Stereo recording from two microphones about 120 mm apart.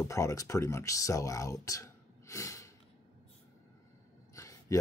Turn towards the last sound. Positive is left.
turn(degrees=25)  # may be behind; listen again after turning